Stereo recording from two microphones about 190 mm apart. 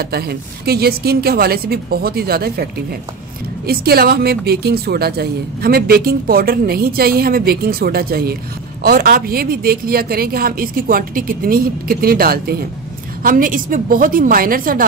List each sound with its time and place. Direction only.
0.0 s a woman's voice: 55° right (ahead or behind)